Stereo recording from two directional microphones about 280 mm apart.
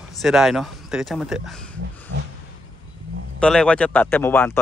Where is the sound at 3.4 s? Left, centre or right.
Centre.